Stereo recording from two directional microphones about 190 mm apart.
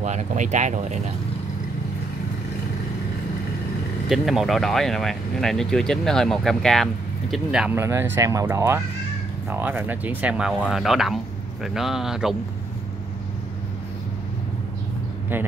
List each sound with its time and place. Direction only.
0.0 s speech: 40° right (ahead or behind)
4.1 s speech: centre (ahead or behind)